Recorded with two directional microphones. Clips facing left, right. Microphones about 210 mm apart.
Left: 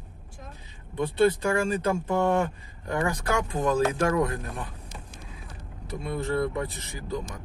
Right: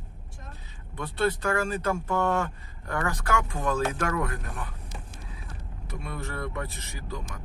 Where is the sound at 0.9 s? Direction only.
15° left (ahead or behind).